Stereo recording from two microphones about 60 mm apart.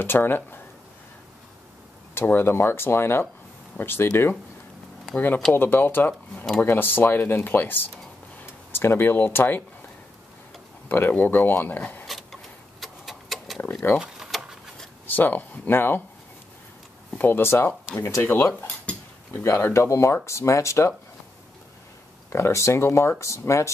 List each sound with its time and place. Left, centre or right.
0.0 s speech: left
2.1 s speech: left
10.9 s speech: left
12.1 s a sound: centre
13.6 s a sound: left
13.9 s a sound: centre
15.0 s speech: left
17.2 s speech: left
19.4 s speech: left
22.3 s speech: left